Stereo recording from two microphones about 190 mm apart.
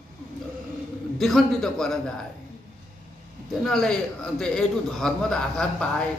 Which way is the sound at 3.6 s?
5° left (ahead or behind).